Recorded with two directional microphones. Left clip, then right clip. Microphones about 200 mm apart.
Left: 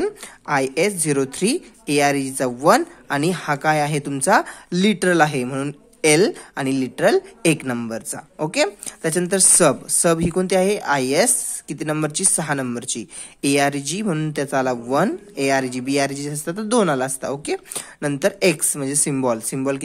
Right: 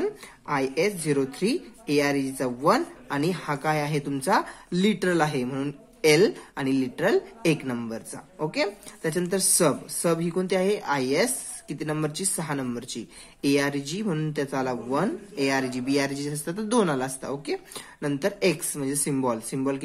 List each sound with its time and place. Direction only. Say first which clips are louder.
0.0 s a woman's voice: left 5 dB; 40° left (ahead or behind)